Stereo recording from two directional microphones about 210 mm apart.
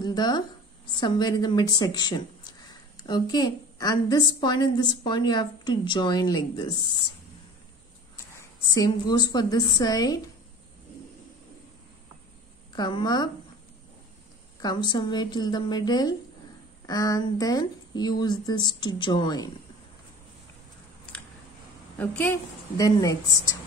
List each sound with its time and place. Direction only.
0.0 s a woman's voice: 20° left (ahead or behind)
8.4 s a woman's voice: 15° left (ahead or behind)
12.7 s a woman's voice: 20° left (ahead or behind)
14.6 s a woman's voice: 20° left (ahead or behind)
21.9 s a woman's voice: 10° left (ahead or behind)